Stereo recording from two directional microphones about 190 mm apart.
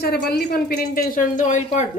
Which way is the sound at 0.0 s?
55° left (ahead or behind).